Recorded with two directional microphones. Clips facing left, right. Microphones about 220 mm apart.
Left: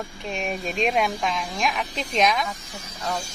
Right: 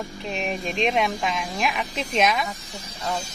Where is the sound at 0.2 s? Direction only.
Centre (ahead or behind).